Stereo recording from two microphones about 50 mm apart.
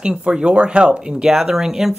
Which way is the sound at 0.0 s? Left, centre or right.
Centre.